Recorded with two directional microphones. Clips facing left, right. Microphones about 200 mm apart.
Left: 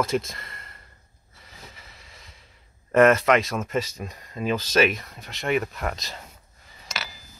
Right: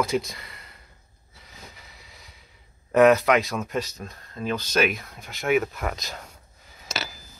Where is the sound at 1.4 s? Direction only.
Centre (ahead or behind).